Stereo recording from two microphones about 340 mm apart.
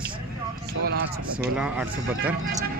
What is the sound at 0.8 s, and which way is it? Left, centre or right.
Speech, right.